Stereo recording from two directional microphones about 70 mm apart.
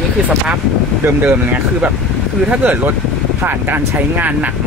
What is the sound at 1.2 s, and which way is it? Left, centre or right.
Speech, right.